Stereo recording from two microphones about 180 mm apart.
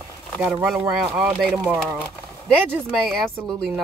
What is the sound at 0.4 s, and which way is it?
A woman's voice, 5° right (ahead or behind).